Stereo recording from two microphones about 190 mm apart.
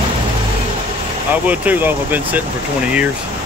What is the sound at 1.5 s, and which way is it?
Speech, 10° right (ahead or behind).